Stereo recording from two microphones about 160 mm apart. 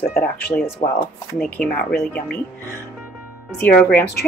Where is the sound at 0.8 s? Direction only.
35° left (ahead or behind).